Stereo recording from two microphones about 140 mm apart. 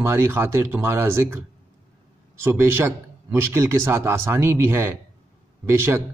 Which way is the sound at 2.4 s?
15° right (ahead or behind).